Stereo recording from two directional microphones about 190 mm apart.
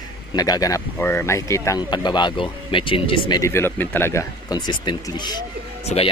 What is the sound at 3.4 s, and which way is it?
Speech, 15° left (ahead or behind).